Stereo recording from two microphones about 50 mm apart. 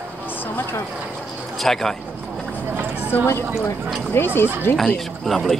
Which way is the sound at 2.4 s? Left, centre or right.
Right.